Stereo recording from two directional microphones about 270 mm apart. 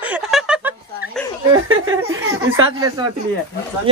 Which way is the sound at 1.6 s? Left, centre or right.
Right.